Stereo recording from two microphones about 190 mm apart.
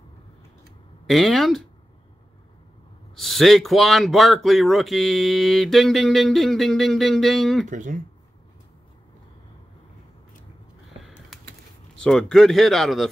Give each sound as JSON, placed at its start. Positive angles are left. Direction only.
{"t": 1.0, "sound": "speech", "side_deg": 0}
{"t": 3.2, "sound": "speech", "side_deg": 0}
{"t": 7.6, "sound": "speech", "side_deg": -40}
{"t": 11.0, "sound": "a sound", "side_deg": 0}
{"t": 12.0, "sound": "speech", "side_deg": 5}